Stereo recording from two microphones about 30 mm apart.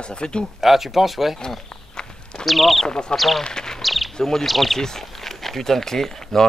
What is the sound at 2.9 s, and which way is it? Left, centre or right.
Speech, left.